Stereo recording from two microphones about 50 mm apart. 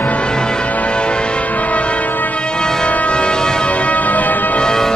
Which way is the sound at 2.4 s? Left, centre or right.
Centre.